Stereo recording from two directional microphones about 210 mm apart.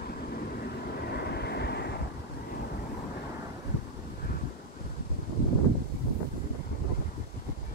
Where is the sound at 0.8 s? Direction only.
50° left (ahead or behind).